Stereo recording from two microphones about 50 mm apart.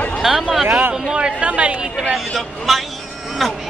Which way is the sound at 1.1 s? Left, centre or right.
Right.